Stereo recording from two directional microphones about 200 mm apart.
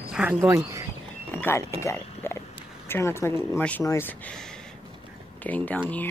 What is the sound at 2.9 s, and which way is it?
Speech, 10° left (ahead or behind).